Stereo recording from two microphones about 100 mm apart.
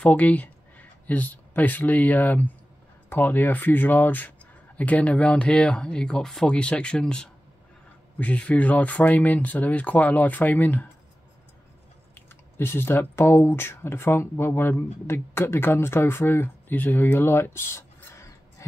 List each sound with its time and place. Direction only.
0.0 s speech: 15° left (ahead or behind)
12.5 s speech: 20° left (ahead or behind)